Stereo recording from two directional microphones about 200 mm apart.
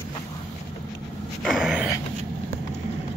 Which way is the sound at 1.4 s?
Centre (ahead or behind).